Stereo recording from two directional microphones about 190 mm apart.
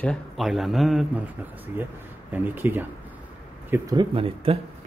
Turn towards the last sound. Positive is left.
turn(degrees=-30)  # may be behind; listen again after turning